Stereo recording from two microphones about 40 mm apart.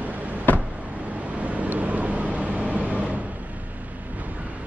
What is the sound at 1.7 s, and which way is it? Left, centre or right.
Vehicle, right.